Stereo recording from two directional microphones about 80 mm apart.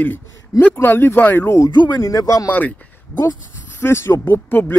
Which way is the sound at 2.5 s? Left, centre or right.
Centre.